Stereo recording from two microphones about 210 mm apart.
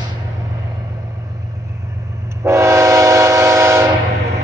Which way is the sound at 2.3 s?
10° right (ahead or behind).